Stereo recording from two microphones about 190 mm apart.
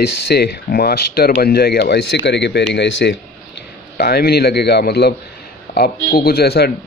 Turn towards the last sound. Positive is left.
turn(degrees=55)  # may be behind; listen again after turning